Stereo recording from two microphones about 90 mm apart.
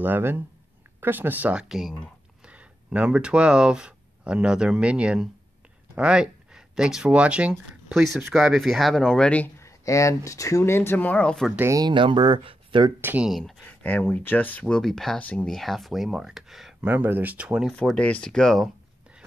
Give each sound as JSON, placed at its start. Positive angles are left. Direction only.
{"t": 0.0, "sound": "speech", "side_deg": -25}
{"t": 2.4, "sound": "speech", "side_deg": -15}
{"t": 9.6, "sound": "speech", "side_deg": 35}
{"t": 11.9, "sound": "speech", "side_deg": -65}
{"t": 13.3, "sound": "speech", "side_deg": 0}
{"t": 13.7, "sound": "speech", "side_deg": 20}
{"t": 14.8, "sound": "speech", "side_deg": 5}
{"t": 15.1, "sound": "speech", "side_deg": 15}
{"t": 15.4, "sound": "speech", "side_deg": 0}
{"t": 16.8, "sound": "speech", "side_deg": -20}
{"t": 17.9, "sound": "speech", "side_deg": 15}